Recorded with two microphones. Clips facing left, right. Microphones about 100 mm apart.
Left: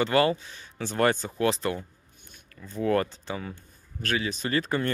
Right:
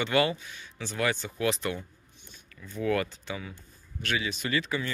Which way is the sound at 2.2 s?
50° left (ahead or behind).